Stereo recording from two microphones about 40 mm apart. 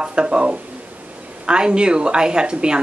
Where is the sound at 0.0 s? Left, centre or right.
Right.